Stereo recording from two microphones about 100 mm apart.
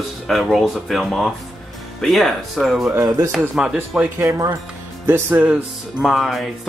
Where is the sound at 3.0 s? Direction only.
35° right (ahead or behind).